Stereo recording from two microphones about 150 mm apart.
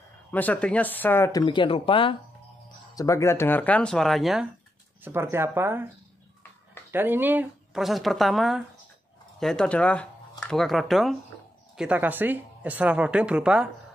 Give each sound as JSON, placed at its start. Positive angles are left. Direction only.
{"t": 0.3, "sound": "speech", "side_deg": 10}
{"t": 1.4, "sound": "speech", "side_deg": 30}
{"t": 3.0, "sound": "speech", "side_deg": 20}
{"t": 5.0, "sound": "speech", "side_deg": -15}
{"t": 6.9, "sound": "speech", "side_deg": -15}
{"t": 7.8, "sound": "speech", "side_deg": 0}